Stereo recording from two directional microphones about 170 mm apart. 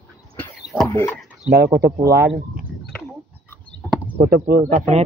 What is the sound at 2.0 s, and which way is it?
Speech, 70° right (ahead or behind).